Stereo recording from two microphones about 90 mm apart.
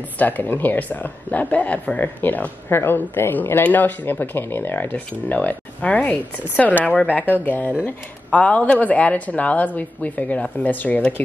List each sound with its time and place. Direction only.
0.2 s speech: 20° left (ahead or behind)